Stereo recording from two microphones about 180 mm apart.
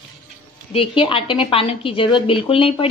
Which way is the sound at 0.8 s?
30° left (ahead or behind).